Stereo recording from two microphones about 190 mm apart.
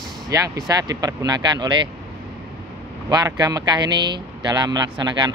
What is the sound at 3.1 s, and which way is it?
Speech, 20° right (ahead or behind).